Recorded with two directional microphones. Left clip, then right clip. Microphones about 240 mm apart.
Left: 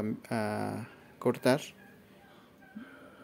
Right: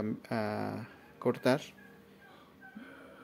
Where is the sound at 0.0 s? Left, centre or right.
Centre.